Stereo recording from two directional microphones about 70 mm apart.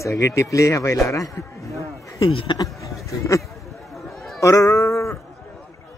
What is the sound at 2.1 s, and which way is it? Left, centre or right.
Speech, left.